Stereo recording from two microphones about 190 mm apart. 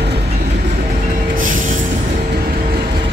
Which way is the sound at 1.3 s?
45° right (ahead or behind).